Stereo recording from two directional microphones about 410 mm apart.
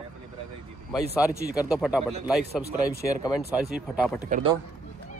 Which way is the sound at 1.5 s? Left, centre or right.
Centre.